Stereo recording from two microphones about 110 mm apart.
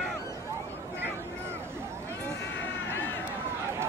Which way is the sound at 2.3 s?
20° left (ahead or behind).